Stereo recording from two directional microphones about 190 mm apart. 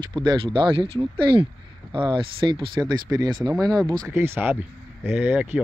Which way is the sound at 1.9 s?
25° right (ahead or behind).